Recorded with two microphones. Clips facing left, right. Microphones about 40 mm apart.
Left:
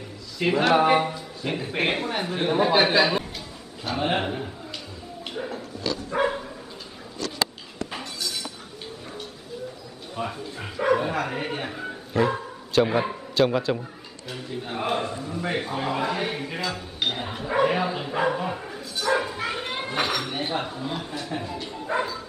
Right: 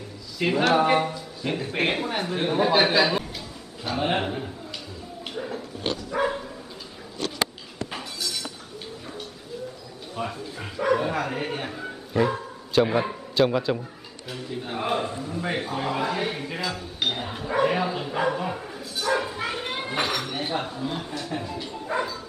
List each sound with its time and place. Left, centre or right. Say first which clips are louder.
0.4 s a man's voice: left 1 dB; centre
5.2 s a sound: even; centre
6.2 s dog: left 1 dB; centre
7.9 s chink: even; centre
10.1 s a man's voice: even; centre